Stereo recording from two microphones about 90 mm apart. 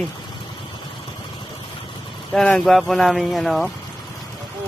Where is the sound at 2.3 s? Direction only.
10° left (ahead or behind).